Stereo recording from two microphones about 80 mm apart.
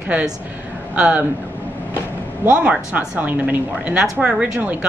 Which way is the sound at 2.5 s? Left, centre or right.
Centre.